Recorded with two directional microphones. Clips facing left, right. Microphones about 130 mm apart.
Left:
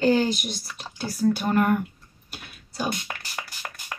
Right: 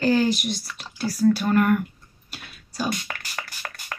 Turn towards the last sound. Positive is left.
turn(degrees=15)  # may be behind; listen again after turning